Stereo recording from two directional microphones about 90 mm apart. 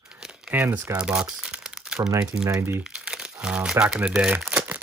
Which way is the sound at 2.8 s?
10° right (ahead or behind).